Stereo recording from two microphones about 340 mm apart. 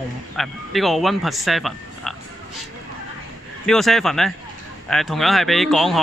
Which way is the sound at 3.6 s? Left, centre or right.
Centre.